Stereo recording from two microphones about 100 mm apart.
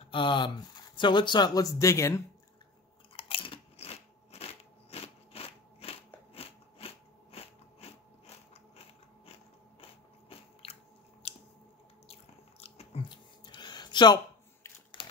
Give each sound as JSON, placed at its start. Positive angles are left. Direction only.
{"t": 0.1, "sound": "speech", "side_deg": 55}
{"t": 3.2, "sound": "biting", "side_deg": 65}
{"t": 10.3, "sound": "squish", "side_deg": 75}
{"t": 12.1, "sound": "drip", "side_deg": 90}
{"t": 13.1, "sound": "a sound", "side_deg": 50}
{"t": 15.0, "sound": "typewriter", "side_deg": 55}